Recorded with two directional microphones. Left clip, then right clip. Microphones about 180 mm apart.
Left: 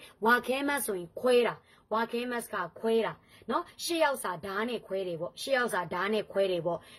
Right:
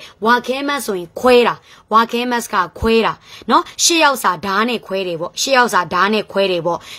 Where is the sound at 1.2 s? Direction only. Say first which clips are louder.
Right 14 dB; 25° right (ahead or behind).